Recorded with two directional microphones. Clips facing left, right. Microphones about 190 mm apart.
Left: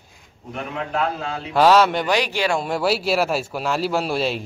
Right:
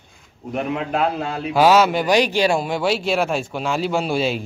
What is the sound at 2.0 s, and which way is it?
Speech, 20° right (ahead or behind).